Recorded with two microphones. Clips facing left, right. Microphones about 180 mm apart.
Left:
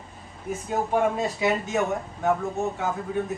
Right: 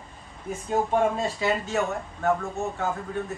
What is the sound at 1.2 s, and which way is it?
Speech, 15° left (ahead or behind).